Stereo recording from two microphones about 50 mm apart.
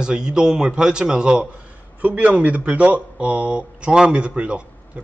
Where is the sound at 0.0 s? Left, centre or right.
Centre.